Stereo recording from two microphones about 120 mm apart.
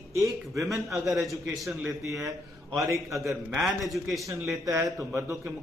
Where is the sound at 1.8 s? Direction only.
25° right (ahead or behind).